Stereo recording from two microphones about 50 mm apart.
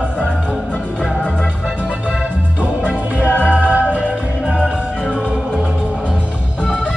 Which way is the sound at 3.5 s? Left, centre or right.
Right.